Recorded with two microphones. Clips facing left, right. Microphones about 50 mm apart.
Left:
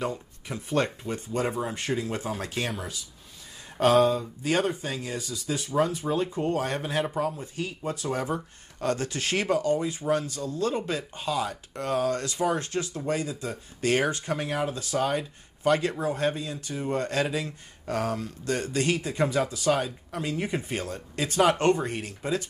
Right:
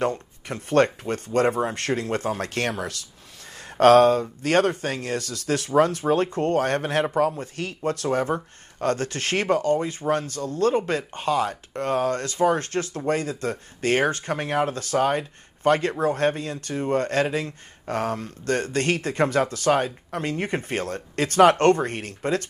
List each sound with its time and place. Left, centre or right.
0.0 s speech: right
2.8 s speech: right
3.8 s speech: right
8.1 s speech: right
13.8 s speech: right
15.0 s speech: right